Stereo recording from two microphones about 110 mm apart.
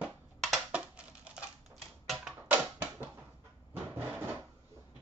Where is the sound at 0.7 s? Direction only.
10° right (ahead or behind).